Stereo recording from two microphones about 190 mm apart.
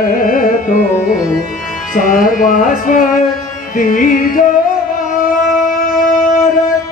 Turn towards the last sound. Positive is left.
turn(degrees=45)  # may be behind; listen again after turning